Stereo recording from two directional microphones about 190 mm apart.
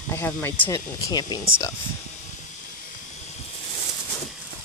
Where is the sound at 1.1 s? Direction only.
20° left (ahead or behind).